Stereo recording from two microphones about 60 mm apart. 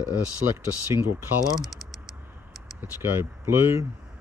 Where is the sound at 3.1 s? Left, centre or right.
Right.